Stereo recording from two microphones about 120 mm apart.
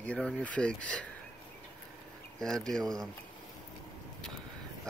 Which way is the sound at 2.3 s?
5° left (ahead or behind).